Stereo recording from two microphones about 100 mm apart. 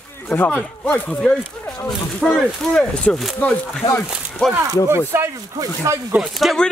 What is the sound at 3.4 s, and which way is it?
Speech, 15° left (ahead or behind).